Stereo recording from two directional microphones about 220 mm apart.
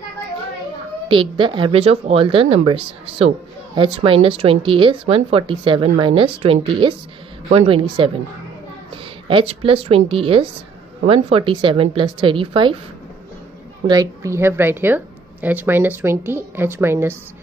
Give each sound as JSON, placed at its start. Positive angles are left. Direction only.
{"t": 1.0, "sound": "speech", "side_deg": -25}
{"t": 13.8, "sound": "a woman's voice", "side_deg": -15}